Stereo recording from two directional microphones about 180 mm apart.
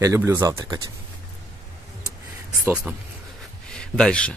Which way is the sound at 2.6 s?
5° right (ahead or behind).